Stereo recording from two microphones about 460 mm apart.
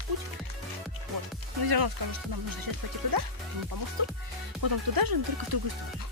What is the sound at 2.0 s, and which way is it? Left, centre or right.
Speech, right.